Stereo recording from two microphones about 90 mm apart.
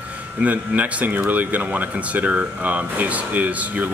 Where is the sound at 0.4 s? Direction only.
15° right (ahead or behind).